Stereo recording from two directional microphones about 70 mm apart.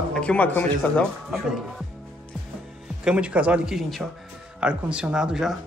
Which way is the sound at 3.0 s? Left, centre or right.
Centre.